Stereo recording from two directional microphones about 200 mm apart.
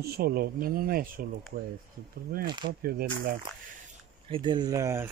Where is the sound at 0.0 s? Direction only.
50° right (ahead or behind).